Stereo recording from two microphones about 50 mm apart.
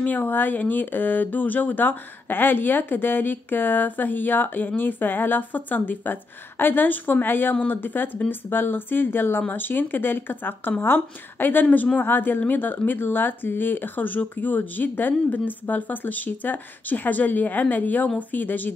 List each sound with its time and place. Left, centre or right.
0.0 s speech: left